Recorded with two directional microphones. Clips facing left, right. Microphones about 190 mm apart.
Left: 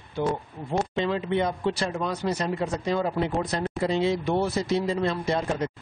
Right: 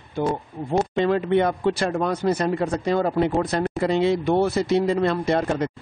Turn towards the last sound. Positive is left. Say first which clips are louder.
# right 5 dB
turn(degrees=-60)  # may be behind; listen again after turning